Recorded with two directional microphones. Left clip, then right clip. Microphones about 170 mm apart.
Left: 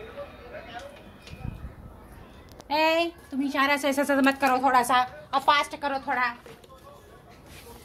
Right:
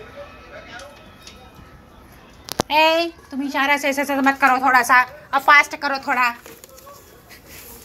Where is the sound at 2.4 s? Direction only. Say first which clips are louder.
Right 8 dB; centre (ahead or behind).